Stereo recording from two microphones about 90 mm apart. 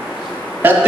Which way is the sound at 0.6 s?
20° right (ahead or behind).